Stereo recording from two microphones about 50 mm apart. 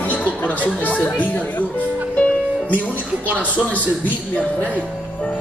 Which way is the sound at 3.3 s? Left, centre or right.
Left.